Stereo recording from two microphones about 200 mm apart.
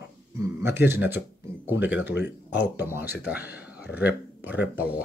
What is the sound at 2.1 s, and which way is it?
Speech, 60° left (ahead or behind).